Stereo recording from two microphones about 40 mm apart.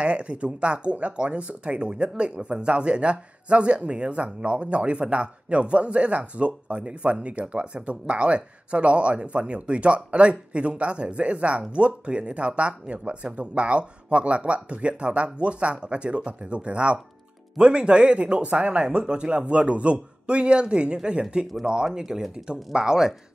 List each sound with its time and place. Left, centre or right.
0.0 s speech: right